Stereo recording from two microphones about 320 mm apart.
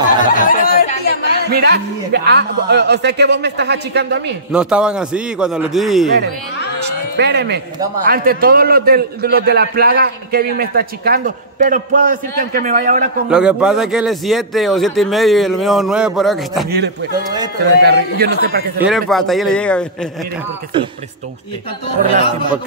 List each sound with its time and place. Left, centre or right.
0.2 s chatter: left
1.5 s speech: right
4.5 s a man's voice: centre
7.2 s a man's voice: right
13.3 s a man's voice: centre
17.6 s speech: right
18.9 s a man's voice: centre